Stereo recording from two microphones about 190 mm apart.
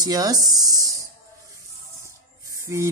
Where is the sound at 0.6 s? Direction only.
20° right (ahead or behind).